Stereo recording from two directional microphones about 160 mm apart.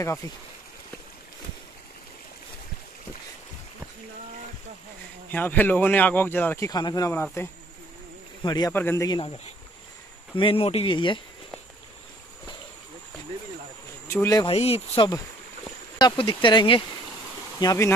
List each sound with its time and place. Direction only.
0.2 s speech: 25° left (ahead or behind)
5.3 s a man's voice: 10° left (ahead or behind)
8.7 s speech: 15° left (ahead or behind)
10.3 s speech: 35° left (ahead or behind)
14.0 s speech: 15° left (ahead or behind)
14.5 s speech: 40° left (ahead or behind); by 17.9 s 20° left (ahead or behind)